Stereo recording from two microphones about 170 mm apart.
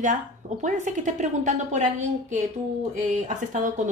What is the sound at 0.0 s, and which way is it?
Speech, 50° right (ahead or behind).